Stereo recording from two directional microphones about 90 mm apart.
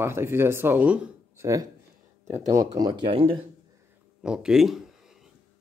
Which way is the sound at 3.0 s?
90° right.